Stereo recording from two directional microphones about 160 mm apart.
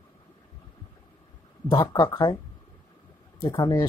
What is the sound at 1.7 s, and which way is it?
Speech, 30° left (ahead or behind).